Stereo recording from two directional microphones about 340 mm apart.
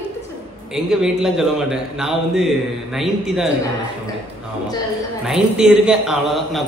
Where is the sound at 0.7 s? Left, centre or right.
Centre.